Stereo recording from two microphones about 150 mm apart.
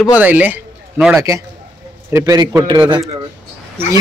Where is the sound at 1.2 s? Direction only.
20° right (ahead or behind).